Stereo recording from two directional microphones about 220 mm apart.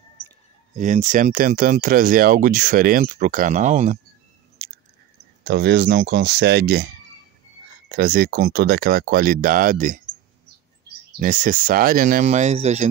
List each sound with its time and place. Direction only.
0.7 s speech: 35° right (ahead or behind)
5.4 s speech: 50° right (ahead or behind)
7.9 s speech: 40° right (ahead or behind)
11.1 s speech: 40° right (ahead or behind)